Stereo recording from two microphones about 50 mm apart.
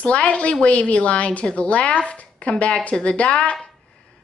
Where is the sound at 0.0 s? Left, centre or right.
Left.